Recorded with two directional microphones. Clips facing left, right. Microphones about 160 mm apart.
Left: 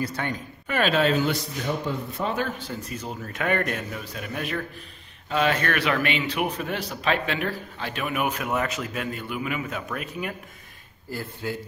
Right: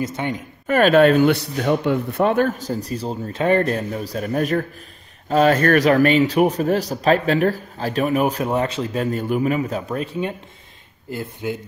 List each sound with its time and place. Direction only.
0.0 s speech: 20° right (ahead or behind)
0.7 s speech: 50° right (ahead or behind); by 11.5 s 20° right (ahead or behind)